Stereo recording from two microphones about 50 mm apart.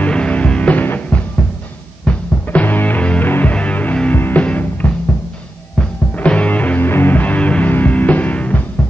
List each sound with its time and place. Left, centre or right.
0.1 s music: left
2.4 s music: left
3.0 s music: left
3.3 s music: left
3.5 s music: left
5.8 s music: centre
6.1 s music: left
6.8 s music: left